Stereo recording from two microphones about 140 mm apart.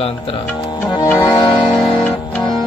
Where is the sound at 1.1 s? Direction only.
15° left (ahead or behind).